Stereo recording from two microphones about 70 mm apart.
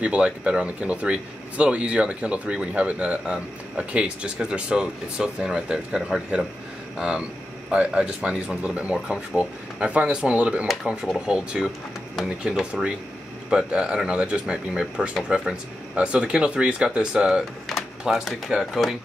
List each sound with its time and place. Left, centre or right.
0.0 s speech: centre
10.7 s speech: centre
12.2 s speech: centre
13.5 s speech: centre
17.6 s speech: centre